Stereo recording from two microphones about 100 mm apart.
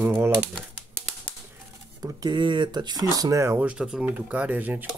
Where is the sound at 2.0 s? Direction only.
45° right (ahead or behind).